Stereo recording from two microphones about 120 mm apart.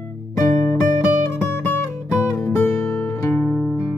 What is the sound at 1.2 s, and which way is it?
Music, 20° left (ahead or behind).